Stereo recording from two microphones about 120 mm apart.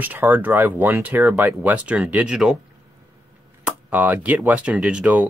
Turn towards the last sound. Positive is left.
turn(degrees=-10)  # may be behind; listen again after turning